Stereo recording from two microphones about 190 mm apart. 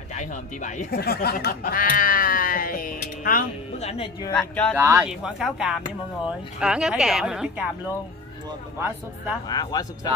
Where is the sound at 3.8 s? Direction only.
35° left (ahead or behind).